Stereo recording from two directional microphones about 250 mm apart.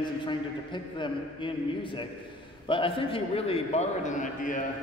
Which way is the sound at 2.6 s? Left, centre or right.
Left.